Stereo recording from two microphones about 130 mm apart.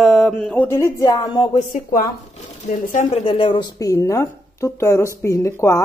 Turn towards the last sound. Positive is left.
turn(degrees=20)  # may be behind; listen again after turning